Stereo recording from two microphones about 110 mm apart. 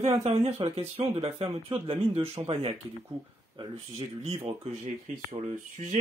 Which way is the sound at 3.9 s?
60° right (ahead or behind).